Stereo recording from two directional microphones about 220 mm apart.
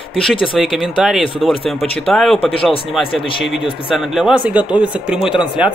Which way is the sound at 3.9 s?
Centre (ahead or behind).